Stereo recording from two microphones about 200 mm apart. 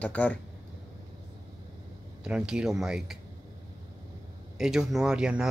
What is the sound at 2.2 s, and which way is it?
Speech, 5° right (ahead or behind).